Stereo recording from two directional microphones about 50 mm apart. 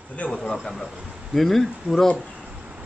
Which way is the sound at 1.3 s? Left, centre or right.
Centre.